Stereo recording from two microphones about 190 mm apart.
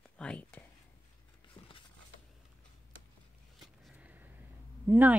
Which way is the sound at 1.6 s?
25° left (ahead or behind).